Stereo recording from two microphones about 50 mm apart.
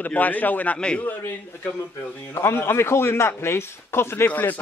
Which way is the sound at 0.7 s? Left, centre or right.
Left.